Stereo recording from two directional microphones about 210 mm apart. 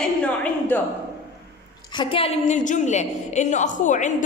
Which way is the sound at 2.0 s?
25° left (ahead or behind).